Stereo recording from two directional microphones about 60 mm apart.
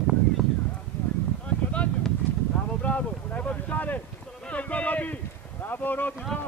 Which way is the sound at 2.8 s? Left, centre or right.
Left.